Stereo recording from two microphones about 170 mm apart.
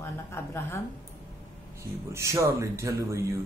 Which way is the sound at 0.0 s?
15° left (ahead or behind).